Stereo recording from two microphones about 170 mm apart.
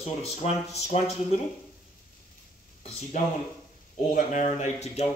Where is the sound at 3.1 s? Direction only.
45° left (ahead or behind).